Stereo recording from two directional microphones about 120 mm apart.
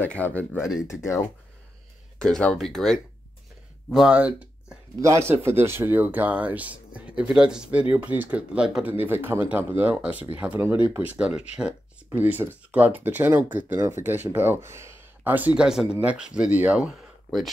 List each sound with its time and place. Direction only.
0.0 s speech: 15° left (ahead or behind)
0.6 s speech: centre (ahead or behind)
0.8 s speech: 25° left (ahead or behind)
2.1 s speech: 5° left (ahead or behind)
3.9 s speech: 5° right (ahead or behind)
5.0 s speech: 25° right (ahead or behind); by 8.9 s 5° right (ahead or behind)
9.0 s speech: 20° right (ahead or behind)